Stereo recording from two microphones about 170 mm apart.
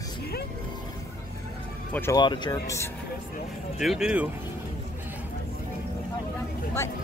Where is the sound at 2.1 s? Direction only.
25° left (ahead or behind).